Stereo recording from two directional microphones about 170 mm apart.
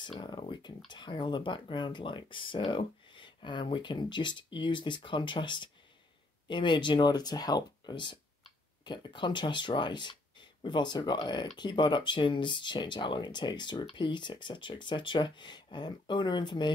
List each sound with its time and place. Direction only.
0.2 s speech: 25° left (ahead or behind)